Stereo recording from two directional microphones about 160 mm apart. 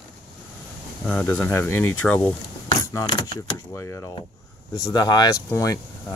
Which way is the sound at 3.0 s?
30° left (ahead or behind).